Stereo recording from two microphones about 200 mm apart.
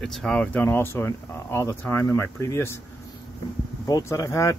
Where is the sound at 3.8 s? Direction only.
15° left (ahead or behind).